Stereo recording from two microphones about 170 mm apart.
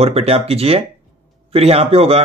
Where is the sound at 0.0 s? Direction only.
35° right (ahead or behind).